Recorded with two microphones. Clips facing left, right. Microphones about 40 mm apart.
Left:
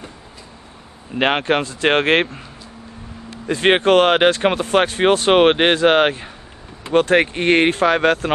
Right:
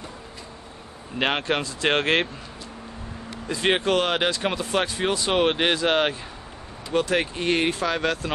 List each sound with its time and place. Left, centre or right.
1.1 s a man's voice: left
3.4 s speech: left